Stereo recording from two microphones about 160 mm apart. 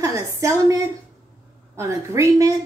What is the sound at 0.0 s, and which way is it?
A woman's voice, 20° right (ahead or behind).